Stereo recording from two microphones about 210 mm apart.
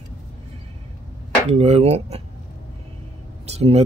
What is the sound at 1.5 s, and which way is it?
Speech, 30° right (ahead or behind).